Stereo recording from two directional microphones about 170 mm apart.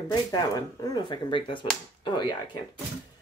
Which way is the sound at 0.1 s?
20° left (ahead or behind).